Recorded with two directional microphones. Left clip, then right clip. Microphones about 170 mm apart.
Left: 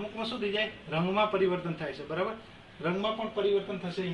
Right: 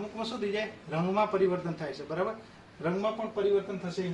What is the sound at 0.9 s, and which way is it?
A man's voice, 15° right (ahead or behind).